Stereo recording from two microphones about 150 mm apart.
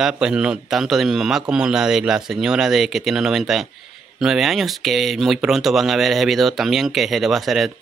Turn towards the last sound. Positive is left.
turn(degrees=0)  # may be behind; listen again after turning